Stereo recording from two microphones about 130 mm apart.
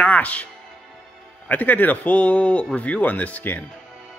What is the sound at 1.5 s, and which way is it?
Speech, 10° left (ahead or behind).